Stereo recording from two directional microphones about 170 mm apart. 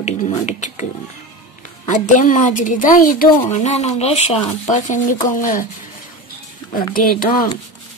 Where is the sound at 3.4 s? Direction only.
40° left (ahead or behind).